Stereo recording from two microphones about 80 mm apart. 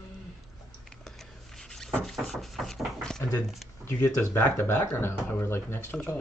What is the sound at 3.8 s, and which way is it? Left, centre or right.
Speech, left.